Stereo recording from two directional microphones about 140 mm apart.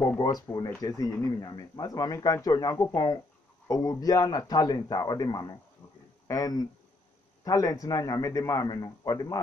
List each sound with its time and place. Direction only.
0.2 s speech: 30° left (ahead or behind)